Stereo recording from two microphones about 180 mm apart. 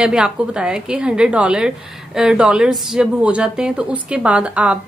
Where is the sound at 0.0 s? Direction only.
5° right (ahead or behind).